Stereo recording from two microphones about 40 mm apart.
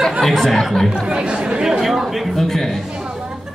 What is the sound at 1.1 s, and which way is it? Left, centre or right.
Chatter, right.